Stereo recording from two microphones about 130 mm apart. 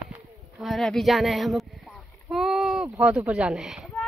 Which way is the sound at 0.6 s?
Centre (ahead or behind).